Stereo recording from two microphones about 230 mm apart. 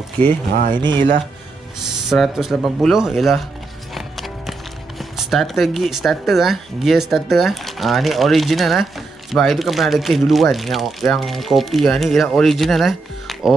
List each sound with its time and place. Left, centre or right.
0.7 s speech: centre
1.8 s speech: centre